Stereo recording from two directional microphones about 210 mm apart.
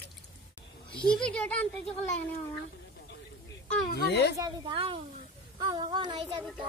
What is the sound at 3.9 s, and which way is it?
Speech, 50° left (ahead or behind).